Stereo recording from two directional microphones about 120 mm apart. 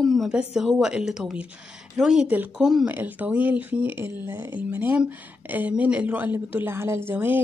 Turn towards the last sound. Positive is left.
turn(degrees=-15)  # may be behind; listen again after turning